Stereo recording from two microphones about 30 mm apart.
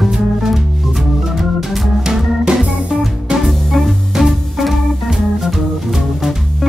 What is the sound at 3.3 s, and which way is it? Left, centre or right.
Music, right.